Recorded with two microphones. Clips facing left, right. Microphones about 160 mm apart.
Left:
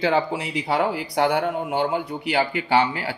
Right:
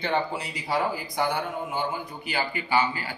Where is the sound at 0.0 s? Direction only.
90° left.